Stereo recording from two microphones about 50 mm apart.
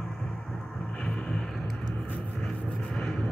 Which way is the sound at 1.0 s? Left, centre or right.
Centre.